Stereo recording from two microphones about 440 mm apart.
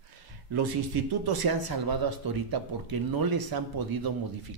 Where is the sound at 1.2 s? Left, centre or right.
Right.